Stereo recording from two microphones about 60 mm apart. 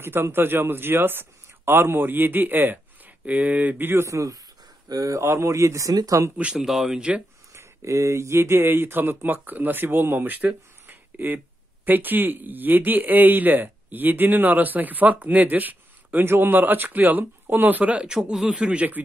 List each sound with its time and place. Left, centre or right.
0.0 s speech: right
4.1 s speech: right
6.3 s speech: centre
6.6 s speech: centre
7.0 s a man's voice: centre
7.5 s speech: right
18.0 s a man's voice: centre